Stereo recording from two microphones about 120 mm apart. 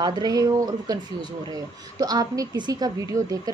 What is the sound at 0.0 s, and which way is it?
A woman's voice, 35° right (ahead or behind).